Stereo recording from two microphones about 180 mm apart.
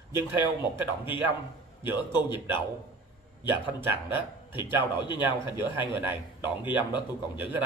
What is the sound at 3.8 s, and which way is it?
Speech, 10° right (ahead or behind).